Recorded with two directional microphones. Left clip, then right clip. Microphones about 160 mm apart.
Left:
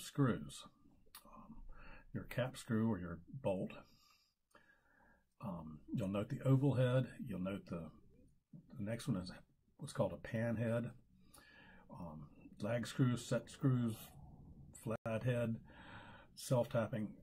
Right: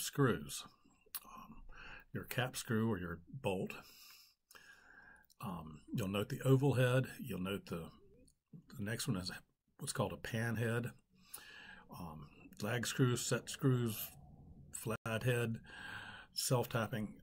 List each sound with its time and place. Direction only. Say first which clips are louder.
0.1 s speech: right 3 dB; 20° right (ahead or behind)
5.9 s speech: right 2 dB; 20° right (ahead or behind)
11.4 s a sound: right 6 dB; 20° right (ahead or behind)
12.5 s speech: right 2 dB; 15° right (ahead or behind)